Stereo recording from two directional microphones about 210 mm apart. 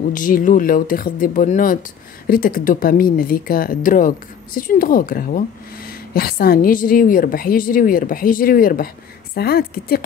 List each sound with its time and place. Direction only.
0.1 s a woman's voice: 40° left (ahead or behind)